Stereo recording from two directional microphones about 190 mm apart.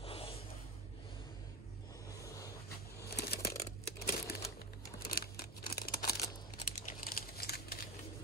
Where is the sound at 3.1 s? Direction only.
55° left (ahead or behind).